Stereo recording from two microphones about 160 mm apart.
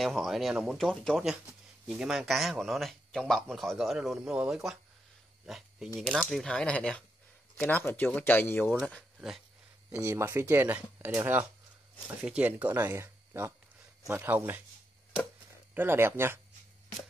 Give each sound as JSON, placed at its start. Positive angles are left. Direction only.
{"t": 0.0, "sound": "speech", "side_deg": 0}
{"t": 5.9, "sound": "speech", "side_deg": 0}
{"t": 10.0, "sound": "speech", "side_deg": -15}
{"t": 12.7, "sound": "speech", "side_deg": -20}
{"t": 15.7, "sound": "speech", "side_deg": -15}